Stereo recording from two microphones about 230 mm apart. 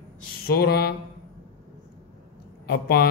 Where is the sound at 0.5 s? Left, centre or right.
Left.